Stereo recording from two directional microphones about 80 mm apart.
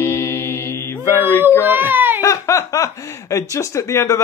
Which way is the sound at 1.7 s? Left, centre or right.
Right.